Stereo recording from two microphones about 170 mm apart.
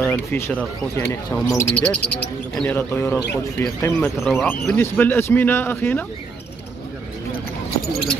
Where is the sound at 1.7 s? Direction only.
5° left (ahead or behind).